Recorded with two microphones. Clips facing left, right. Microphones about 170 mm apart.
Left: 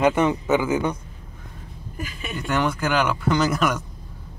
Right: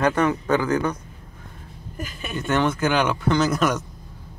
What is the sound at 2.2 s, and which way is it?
Speech, centre (ahead or behind).